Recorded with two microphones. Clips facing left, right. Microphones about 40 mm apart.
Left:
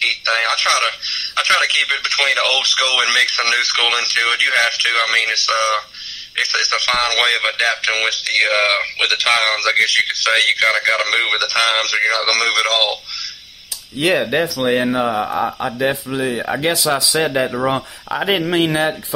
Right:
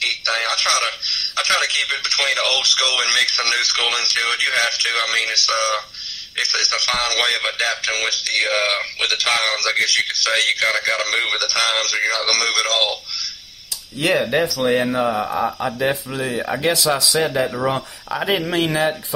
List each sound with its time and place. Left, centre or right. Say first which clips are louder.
0.0 s speech: left 4 dB; centre
14.0 s speech: left 1 dB; centre